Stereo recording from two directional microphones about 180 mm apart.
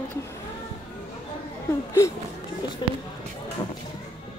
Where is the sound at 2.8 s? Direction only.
25° left (ahead or behind).